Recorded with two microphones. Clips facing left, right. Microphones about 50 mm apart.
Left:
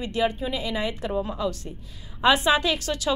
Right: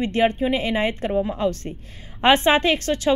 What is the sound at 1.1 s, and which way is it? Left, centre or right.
Speech, right.